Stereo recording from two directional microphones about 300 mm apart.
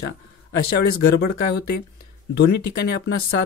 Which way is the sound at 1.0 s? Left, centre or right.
Left.